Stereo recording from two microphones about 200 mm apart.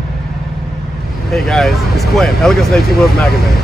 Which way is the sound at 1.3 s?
Centre (ahead or behind).